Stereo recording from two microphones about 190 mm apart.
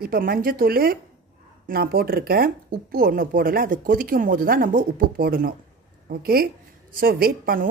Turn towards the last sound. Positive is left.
turn(degrees=-50)  # may be behind; listen again after turning